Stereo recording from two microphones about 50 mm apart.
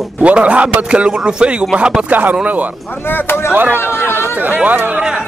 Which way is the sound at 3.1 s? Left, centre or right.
Left.